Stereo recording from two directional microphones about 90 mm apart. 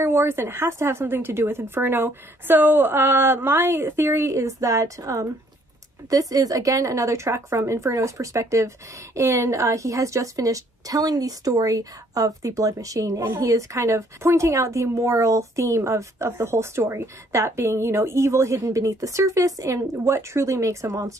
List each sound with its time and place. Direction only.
0.0 s a woman's voice: 25° right (ahead or behind)